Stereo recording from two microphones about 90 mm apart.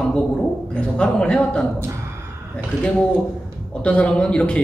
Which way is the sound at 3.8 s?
15° left (ahead or behind).